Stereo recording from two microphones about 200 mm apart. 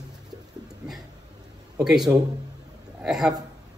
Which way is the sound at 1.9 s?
Centre (ahead or behind).